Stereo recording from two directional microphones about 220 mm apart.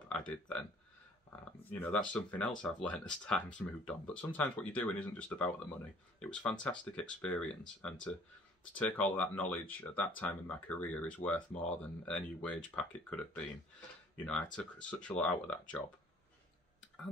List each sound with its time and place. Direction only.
0.1 s speech: 5° left (ahead or behind)